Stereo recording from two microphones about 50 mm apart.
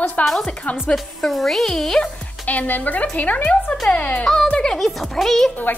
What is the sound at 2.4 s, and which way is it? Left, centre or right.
A woman's voice, left.